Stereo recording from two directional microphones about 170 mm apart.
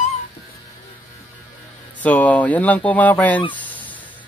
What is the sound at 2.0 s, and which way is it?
Speech, 10° left (ahead or behind).